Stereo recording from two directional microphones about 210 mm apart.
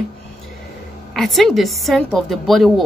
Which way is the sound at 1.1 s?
Centre (ahead or behind).